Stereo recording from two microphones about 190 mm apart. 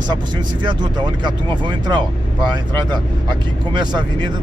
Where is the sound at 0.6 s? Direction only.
25° right (ahead or behind).